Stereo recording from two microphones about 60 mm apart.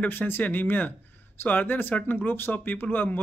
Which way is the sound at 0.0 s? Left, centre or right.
Left.